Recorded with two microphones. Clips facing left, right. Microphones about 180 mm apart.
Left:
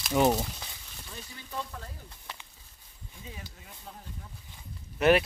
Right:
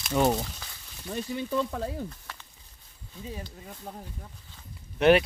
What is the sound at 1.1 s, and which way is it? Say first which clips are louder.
Speech: right 11 dB; 70° right (ahead or behind).